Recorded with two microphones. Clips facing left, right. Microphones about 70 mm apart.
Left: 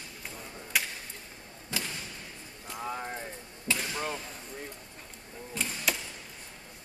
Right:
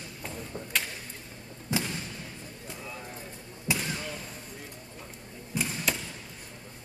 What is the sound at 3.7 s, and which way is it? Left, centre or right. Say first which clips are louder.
Basketball bounce: right 1 dB; centre.